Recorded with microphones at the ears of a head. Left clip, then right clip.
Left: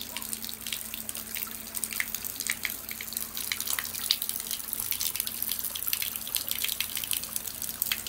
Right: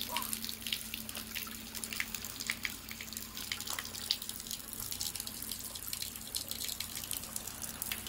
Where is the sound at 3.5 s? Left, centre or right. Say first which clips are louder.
Left 7 dB; left.